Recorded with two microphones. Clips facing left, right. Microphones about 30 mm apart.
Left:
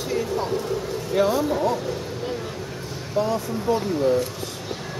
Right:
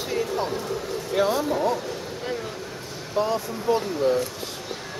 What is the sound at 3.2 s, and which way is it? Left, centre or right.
Speech, right.